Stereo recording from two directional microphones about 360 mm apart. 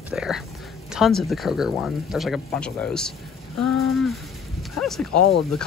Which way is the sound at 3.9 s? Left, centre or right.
Centre.